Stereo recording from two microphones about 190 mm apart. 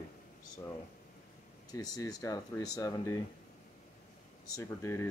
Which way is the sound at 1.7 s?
20° left (ahead or behind).